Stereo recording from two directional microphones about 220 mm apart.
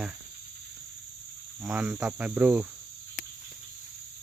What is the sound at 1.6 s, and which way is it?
Cricket, 5° right (ahead or behind).